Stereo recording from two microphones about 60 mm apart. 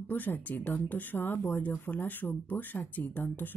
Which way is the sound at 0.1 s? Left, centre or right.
Left.